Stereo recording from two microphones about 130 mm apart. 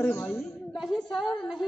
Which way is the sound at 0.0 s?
15° left (ahead or behind).